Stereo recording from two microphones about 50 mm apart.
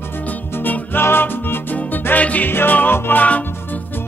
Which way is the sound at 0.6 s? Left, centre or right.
Left.